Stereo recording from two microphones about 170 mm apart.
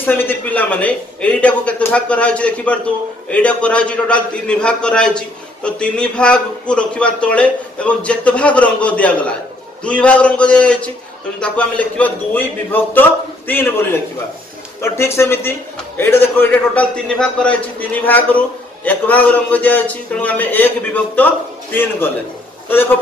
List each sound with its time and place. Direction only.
0.0 s a man's voice: 10° left (ahead or behind)